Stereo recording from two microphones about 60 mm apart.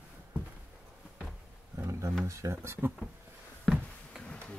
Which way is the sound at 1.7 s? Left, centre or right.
Right.